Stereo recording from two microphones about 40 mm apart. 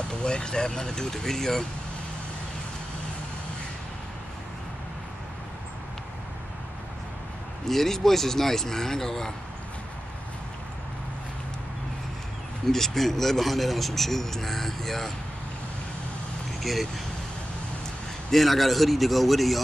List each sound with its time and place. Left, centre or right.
0.1 s speech: left
7.6 s speech: centre
12.6 s speech: centre
16.6 s a man's voice: centre
18.3 s a man's voice: centre